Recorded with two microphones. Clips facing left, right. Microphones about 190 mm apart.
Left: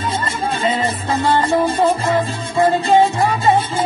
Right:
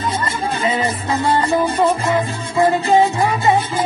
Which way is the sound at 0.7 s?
25° left (ahead or behind).